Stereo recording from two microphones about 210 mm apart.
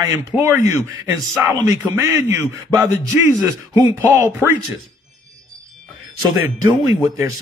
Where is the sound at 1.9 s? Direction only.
10° right (ahead or behind).